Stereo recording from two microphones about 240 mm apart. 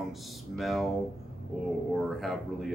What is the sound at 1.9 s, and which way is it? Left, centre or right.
Speech, centre.